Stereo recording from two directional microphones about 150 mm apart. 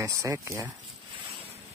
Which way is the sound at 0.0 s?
20° right (ahead or behind).